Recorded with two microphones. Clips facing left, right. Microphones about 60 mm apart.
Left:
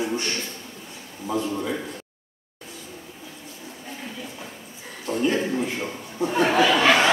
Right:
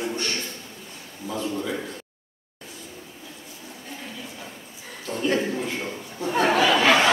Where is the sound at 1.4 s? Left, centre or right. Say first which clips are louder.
Left 1 dB; centre.